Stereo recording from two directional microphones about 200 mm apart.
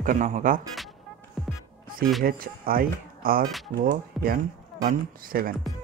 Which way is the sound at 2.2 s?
45° right (ahead or behind).